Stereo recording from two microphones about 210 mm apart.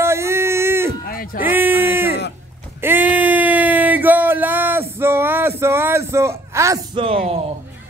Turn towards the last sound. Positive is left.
turn(degrees=-25)  # may be behind; listen again after turning